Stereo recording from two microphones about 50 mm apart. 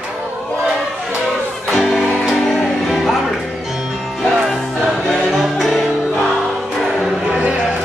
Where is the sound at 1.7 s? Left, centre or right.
Centre.